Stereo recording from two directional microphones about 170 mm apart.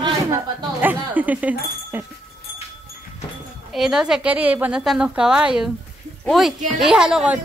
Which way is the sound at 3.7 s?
5° right (ahead or behind).